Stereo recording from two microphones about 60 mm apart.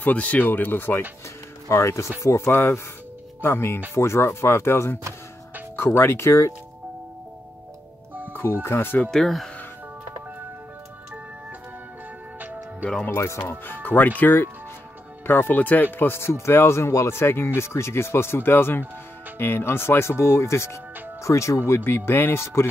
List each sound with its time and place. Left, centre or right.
0.0 s speech: left
1.7 s speech: left
8.3 s music: left
8.6 s speech: left
9.1 s speech: centre
13.0 s speech: left